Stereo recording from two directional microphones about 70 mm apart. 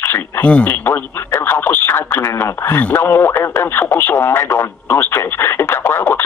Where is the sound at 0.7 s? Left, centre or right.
Left.